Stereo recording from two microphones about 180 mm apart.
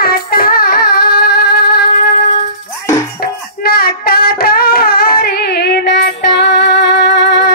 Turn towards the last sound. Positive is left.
turn(degrees=75)  # may be behind; listen again after turning